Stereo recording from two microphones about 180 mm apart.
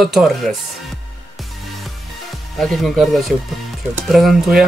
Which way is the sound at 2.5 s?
Centre (ahead or behind).